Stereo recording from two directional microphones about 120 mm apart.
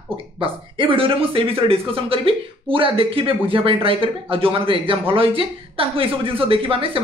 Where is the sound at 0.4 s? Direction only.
50° right (ahead or behind).